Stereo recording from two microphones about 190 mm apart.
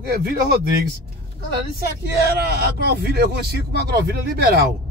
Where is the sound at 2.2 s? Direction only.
55° right (ahead or behind).